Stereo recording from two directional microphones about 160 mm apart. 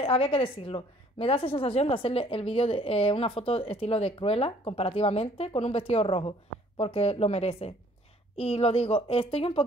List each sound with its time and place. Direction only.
0.0 s a woman's voice: 35° left (ahead or behind)